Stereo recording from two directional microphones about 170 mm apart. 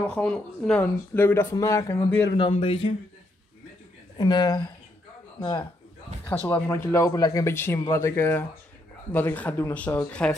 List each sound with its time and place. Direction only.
0.0 s speech: 5° left (ahead or behind)
2.4 s speech: 35° left (ahead or behind)
4.2 s speech: 25° left (ahead or behind)
6.5 s speech: 15° left (ahead or behind)